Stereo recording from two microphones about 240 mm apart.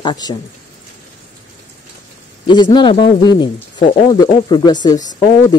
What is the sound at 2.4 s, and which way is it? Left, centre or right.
Speech, centre.